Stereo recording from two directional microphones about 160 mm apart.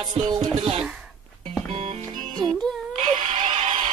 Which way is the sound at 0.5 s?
35° right (ahead or behind).